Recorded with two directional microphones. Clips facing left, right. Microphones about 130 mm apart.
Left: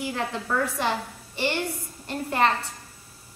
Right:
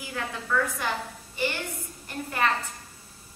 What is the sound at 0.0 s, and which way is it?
A woman's voice, 30° left (ahead or behind).